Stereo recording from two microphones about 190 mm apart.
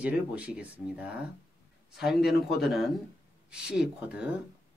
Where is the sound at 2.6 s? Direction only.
Centre (ahead or behind).